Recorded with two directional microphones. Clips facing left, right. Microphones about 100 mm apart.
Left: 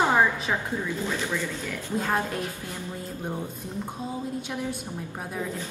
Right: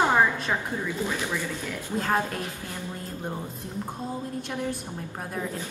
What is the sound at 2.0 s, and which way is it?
Speech, centre (ahead or behind).